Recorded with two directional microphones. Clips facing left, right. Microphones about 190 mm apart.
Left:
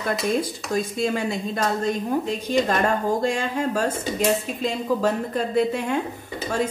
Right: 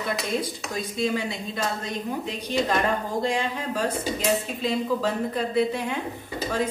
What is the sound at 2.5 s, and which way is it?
A woman's voice, 45° left (ahead or behind).